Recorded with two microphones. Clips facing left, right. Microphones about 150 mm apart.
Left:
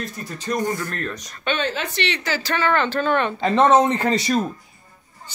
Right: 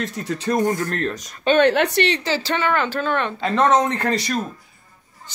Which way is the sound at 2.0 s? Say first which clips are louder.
Right 3 dB; 30° right (ahead or behind).